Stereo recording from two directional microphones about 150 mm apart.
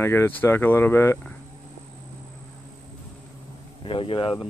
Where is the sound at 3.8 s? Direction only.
35° left (ahead or behind).